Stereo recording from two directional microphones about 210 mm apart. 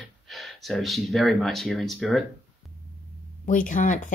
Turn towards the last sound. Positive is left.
turn(degrees=40)  # may be behind; listen again after turning